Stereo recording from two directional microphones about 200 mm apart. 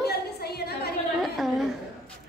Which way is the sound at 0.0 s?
55° left (ahead or behind).